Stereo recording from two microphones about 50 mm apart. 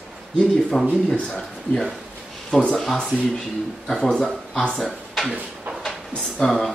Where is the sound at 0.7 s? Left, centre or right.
Centre.